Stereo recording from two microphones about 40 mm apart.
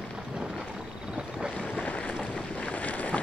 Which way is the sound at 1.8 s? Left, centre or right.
Left.